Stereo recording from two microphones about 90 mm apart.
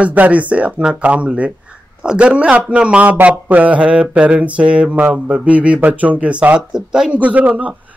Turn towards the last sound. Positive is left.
turn(degrees=-15)  # may be behind; listen again after turning